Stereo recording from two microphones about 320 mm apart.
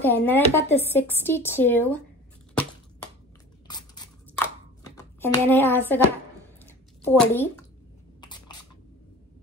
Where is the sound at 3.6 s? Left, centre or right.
Centre.